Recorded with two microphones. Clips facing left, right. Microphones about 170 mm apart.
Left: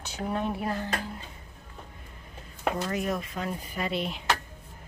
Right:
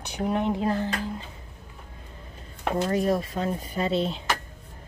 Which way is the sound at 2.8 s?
30° right (ahead or behind).